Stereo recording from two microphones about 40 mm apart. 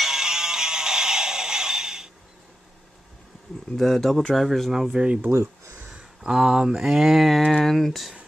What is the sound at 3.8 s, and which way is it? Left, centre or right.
Speech, centre.